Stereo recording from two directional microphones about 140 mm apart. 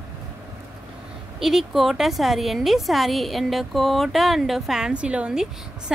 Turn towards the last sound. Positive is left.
turn(degrees=-10)  # may be behind; listen again after turning